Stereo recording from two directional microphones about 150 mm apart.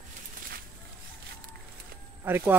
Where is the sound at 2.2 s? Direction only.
15° right (ahead or behind).